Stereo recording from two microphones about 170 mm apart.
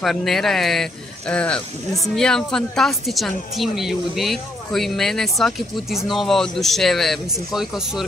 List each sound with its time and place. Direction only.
0.0 s a woman's voice: centre (ahead or behind)